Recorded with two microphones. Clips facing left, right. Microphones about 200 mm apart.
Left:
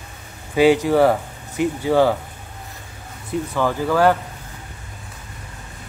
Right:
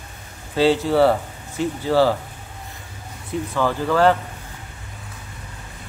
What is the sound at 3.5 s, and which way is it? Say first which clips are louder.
Speech: even; 10° left (ahead or behind).